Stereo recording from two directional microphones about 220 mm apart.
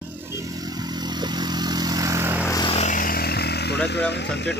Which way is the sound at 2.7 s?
35° left (ahead or behind).